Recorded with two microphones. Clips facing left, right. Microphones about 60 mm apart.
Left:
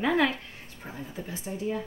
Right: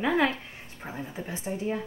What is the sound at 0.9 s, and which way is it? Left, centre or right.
Speech, right.